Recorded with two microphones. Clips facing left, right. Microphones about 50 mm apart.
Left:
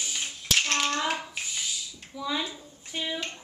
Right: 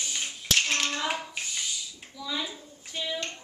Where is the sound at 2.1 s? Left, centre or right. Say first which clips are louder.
Left 3 dB; left.